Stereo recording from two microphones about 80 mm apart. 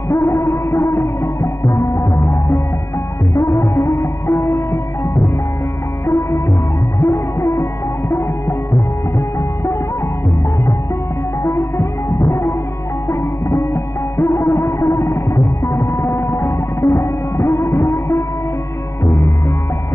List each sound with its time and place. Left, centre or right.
0.1 s music: left
6.0 s music: left
11.4 s music: left